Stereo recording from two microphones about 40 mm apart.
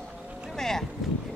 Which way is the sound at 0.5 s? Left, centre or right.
Centre.